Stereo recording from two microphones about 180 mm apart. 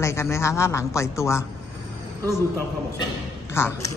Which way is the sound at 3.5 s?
15° left (ahead or behind).